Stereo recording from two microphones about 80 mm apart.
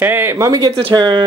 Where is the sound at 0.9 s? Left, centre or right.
Right.